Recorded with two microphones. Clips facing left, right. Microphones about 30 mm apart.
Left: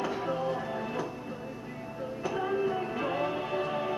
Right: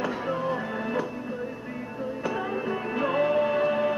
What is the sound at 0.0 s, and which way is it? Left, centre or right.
Music, centre.